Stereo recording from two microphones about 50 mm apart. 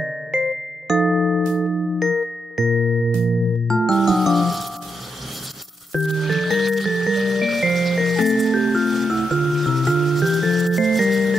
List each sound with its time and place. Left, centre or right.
0.5 s music: centre
5.9 s music: centre